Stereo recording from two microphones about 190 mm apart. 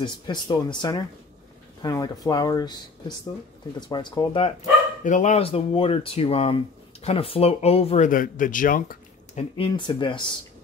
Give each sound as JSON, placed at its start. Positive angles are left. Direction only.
{"t": 0.0, "sound": "speech", "side_deg": 25}
{"t": 5.0, "sound": "speech", "side_deg": 40}
{"t": 8.1, "sound": "speech", "side_deg": 45}
{"t": 9.8, "sound": "speech", "side_deg": 25}